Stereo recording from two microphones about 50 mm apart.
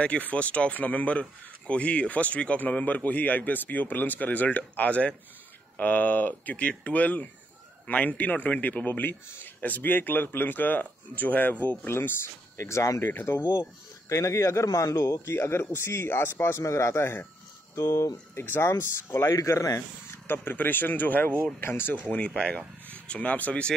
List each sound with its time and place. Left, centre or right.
0.0 s a man's voice: left
11.8 s a man's voice: left
12.5 s speech: left
13.0 s a man's voice: left
13.5 s speech: left
15.3 s a man's voice: left
20.2 s a man's voice: left
21.5 s a man's voice: left
21.9 s a man's voice: left
22.3 s speech: centre
23.0 s speech: left